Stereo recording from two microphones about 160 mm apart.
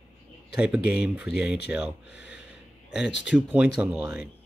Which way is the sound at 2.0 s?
90° left.